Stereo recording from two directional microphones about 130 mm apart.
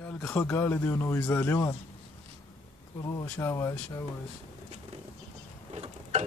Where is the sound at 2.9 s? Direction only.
25° left (ahead or behind).